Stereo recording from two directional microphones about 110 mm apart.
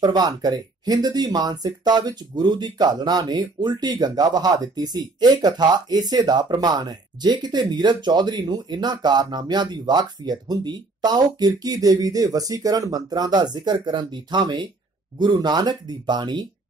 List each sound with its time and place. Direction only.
0.0 s speech: 40° right (ahead or behind)